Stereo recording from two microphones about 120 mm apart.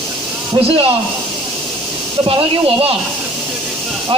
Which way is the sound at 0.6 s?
55° right (ahead or behind).